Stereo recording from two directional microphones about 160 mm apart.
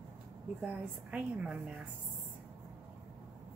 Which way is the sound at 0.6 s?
10° right (ahead or behind).